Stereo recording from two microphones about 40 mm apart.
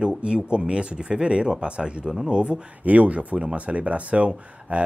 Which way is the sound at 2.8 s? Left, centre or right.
Right.